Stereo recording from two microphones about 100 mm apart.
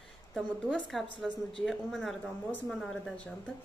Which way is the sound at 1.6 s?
5° left (ahead or behind).